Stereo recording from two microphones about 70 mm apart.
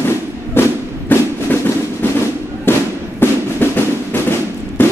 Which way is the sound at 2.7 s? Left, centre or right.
Left.